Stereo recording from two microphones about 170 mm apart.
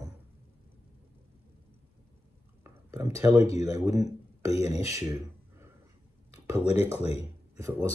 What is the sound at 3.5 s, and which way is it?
Speech, 20° right (ahead or behind).